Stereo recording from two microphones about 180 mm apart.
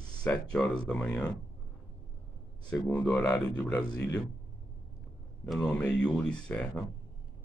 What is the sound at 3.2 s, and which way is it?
Speech, 20° left (ahead or behind).